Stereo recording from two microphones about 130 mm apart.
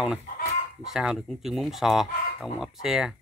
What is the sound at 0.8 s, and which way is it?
Speech, 5° right (ahead or behind).